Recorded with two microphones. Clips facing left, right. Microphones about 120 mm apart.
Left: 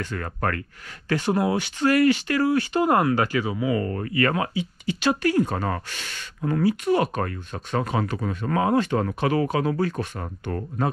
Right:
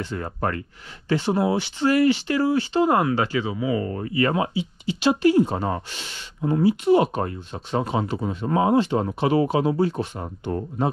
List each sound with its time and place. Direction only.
0.0 s speech: 20° right (ahead or behind)